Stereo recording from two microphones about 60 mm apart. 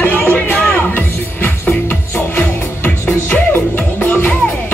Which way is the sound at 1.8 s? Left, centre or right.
Left.